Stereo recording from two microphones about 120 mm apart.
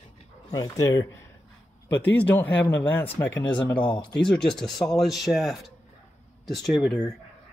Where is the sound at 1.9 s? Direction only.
15° left (ahead or behind).